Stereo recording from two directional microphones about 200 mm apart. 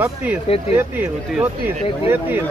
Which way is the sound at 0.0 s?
10° right (ahead or behind).